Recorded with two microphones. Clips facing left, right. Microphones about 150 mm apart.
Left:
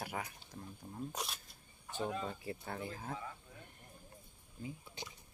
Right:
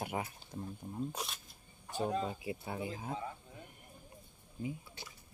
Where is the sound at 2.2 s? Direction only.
10° right (ahead or behind).